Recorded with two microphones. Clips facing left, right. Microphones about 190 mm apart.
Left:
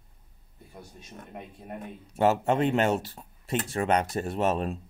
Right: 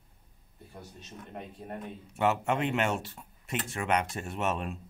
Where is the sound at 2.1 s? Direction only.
35° left (ahead or behind).